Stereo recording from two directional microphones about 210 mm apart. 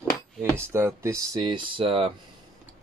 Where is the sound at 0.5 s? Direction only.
10° right (ahead or behind).